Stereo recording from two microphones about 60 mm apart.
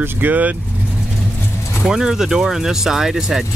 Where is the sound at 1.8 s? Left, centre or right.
Centre.